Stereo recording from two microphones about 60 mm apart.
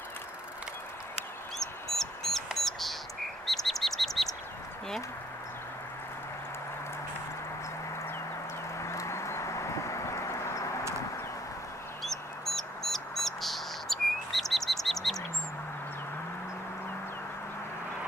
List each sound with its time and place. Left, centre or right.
2.0 s bird: centre
8.7 s clip-clop: left
12.0 s bird: centre